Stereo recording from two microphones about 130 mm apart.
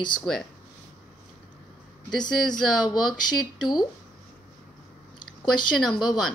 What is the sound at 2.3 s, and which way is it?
A woman's voice, 5° left (ahead or behind).